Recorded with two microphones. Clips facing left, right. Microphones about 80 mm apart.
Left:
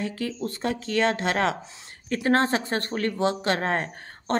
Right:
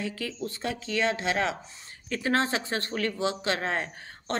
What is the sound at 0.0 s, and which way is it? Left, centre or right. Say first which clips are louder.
Speech: left 4 dB; left.